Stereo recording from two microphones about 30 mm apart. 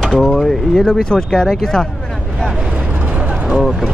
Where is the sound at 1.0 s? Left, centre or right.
Left.